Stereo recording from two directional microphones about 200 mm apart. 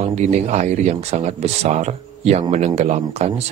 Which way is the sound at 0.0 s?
35° right (ahead or behind).